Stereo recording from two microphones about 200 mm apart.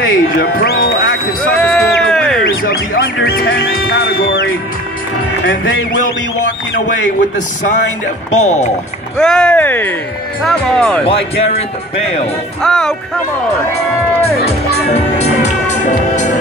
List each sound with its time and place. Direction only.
0.1 s music: 50° left (ahead or behind)
1.6 s a sound: 5° left (ahead or behind)
2.4 s music: 50° left (ahead or behind)
8.3 s speech: 35° left (ahead or behind)
9.2 s speech: 5° left (ahead or behind)
11.1 s speech: 30° left (ahead or behind)
12.6 s speech: 5° left (ahead or behind)
14.9 s music: 35° left (ahead or behind)